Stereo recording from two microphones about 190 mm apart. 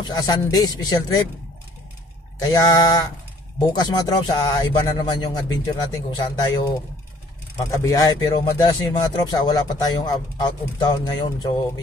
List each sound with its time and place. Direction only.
0.0 s speech: 20° left (ahead or behind)
2.3 s speech: 20° left (ahead or behind)